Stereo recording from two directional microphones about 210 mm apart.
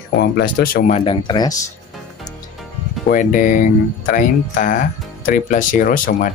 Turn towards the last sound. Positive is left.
turn(degrees=40)  # may be behind; listen again after turning